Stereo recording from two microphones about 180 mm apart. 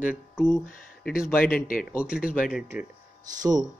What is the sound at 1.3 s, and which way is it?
Speech, 55° left (ahead or behind).